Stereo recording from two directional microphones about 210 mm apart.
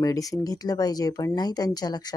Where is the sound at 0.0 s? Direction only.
15° left (ahead or behind).